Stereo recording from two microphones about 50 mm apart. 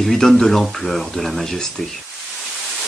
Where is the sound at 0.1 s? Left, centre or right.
Centre.